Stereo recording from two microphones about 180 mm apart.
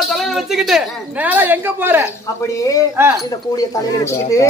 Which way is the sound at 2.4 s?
20° left (ahead or behind).